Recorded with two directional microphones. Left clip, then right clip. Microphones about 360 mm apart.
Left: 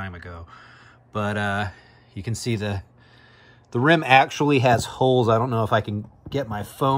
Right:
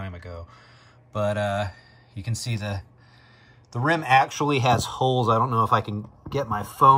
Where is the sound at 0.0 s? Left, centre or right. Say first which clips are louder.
Left 2 dB; centre.